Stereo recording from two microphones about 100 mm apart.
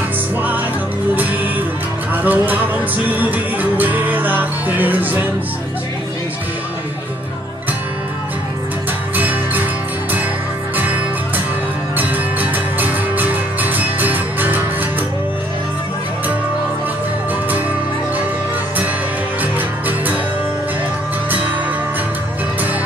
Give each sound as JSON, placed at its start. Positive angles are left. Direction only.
{"t": 2.2, "sound": "music", "side_deg": -15}
{"t": 9.1, "sound": "music", "side_deg": -15}
{"t": 10.8, "sound": "music", "side_deg": -20}